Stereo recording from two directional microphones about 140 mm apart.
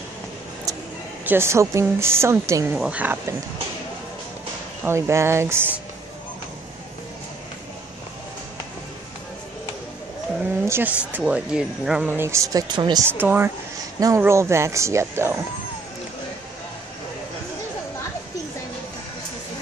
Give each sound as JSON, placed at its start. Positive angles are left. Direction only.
{"t": 1.2, "sound": "a woman's voice", "side_deg": -15}
{"t": 4.8, "sound": "a woman's voice", "side_deg": -20}
{"t": 10.4, "sound": "speech", "side_deg": -15}
{"t": 13.1, "sound": "a woman's voice", "side_deg": -15}